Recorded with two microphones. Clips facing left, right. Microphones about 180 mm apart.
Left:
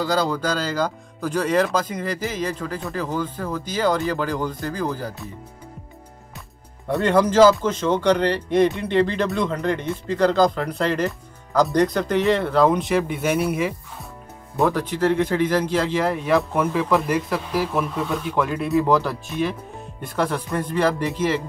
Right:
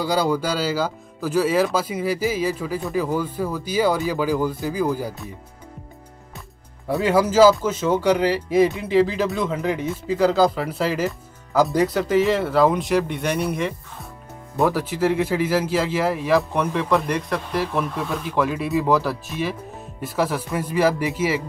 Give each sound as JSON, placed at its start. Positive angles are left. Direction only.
{"t": 0.0, "sound": "speech", "side_deg": -10}
{"t": 6.9, "sound": "speech", "side_deg": -5}
{"t": 14.6, "sound": "speech", "side_deg": -5}